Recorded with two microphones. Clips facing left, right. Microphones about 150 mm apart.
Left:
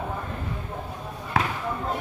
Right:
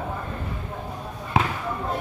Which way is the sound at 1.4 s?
20° right (ahead or behind).